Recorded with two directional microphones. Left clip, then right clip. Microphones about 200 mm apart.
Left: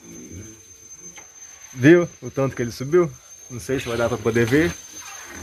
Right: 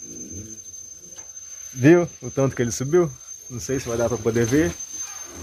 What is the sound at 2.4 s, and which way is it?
Speech, 20° right (ahead or behind).